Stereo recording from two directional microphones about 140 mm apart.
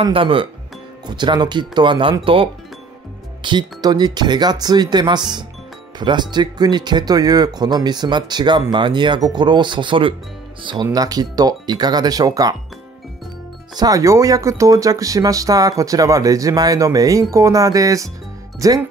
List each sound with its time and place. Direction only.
0.0 s speech: 40° right (ahead or behind)
13.7 s speech: 25° right (ahead or behind)